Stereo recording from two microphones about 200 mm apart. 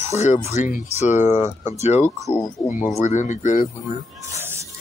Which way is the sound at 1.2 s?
15° right (ahead or behind).